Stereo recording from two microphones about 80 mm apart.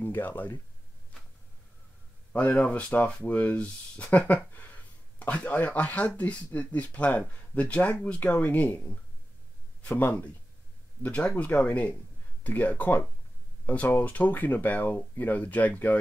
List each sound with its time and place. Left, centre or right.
0.0 s speech: left
2.3 s speech: centre